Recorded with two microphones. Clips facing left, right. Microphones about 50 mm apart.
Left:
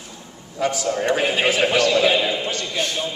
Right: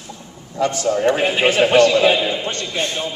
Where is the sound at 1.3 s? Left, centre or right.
Right.